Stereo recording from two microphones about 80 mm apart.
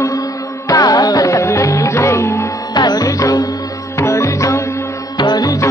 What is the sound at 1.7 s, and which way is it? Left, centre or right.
Music, left.